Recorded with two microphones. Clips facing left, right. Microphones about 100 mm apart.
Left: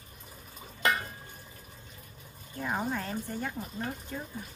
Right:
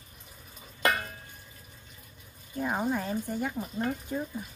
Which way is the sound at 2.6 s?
10° right (ahead or behind).